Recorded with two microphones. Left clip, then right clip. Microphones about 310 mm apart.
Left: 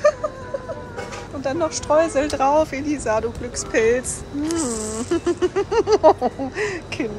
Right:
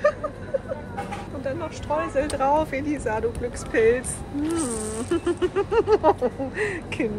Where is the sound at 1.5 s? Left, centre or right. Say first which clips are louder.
Left 8 dB; centre.